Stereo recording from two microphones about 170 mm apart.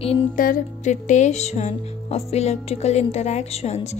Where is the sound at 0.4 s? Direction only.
55° left (ahead or behind).